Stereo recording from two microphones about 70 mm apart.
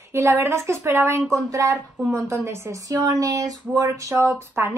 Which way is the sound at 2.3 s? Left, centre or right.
Right.